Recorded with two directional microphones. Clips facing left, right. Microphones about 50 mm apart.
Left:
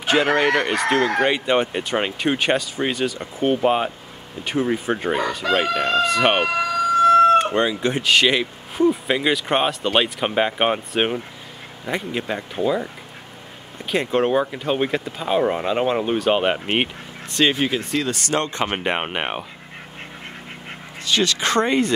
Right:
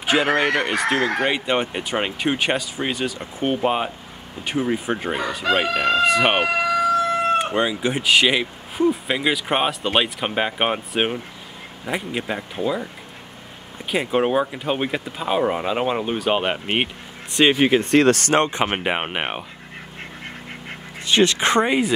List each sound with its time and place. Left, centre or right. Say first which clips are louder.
0.0 s speech: left 1 dB; centre
13.8 s speech: left 1 dB; centre
17.4 s speech: right 3 dB; right
17.9 s speech: right 8 dB; right
18.3 s speech: right 3 dB; right; by 19.4 s centre
21.0 s speech: right 3 dB; right
21.5 s speech: left 2 dB; centre